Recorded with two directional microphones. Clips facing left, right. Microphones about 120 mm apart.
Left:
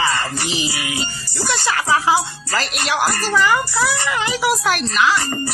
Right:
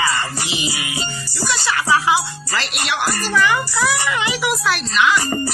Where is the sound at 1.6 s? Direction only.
35° left (ahead or behind).